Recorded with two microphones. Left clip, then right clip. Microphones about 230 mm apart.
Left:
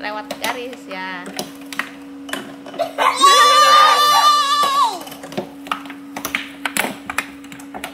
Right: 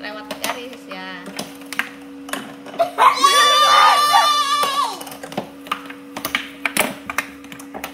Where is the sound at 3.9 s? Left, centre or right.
Left.